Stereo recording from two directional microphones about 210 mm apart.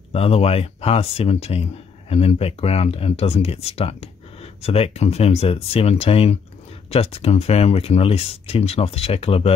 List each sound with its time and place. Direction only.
0.1 s speech: 30° left (ahead or behind)